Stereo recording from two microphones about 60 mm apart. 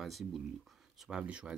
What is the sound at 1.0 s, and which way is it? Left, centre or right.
Speech, centre.